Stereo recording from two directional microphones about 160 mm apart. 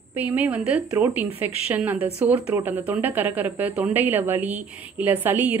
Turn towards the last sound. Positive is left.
turn(degrees=-10)  # may be behind; listen again after turning